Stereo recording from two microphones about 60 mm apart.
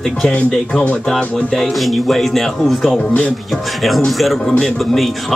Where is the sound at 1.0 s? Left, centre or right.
Centre.